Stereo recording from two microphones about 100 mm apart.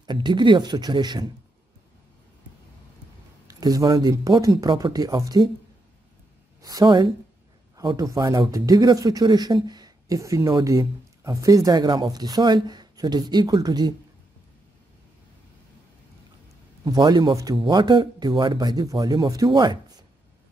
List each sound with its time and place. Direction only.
0.0 s speech: 50° right (ahead or behind)
3.4 s speech: 40° right (ahead or behind)
6.6 s speech: 40° right (ahead or behind)
16.8 s speech: 45° right (ahead or behind)